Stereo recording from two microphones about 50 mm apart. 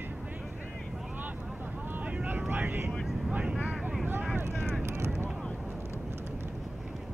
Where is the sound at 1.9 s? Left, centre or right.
Right.